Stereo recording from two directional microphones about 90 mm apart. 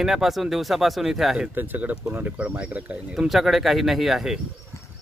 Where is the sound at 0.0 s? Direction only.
Centre (ahead or behind).